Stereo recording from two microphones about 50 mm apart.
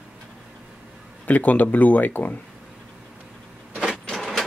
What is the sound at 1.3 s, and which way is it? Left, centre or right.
Speech, left.